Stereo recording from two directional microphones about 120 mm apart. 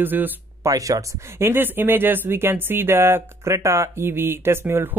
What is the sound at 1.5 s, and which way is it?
Speech, 15° right (ahead or behind).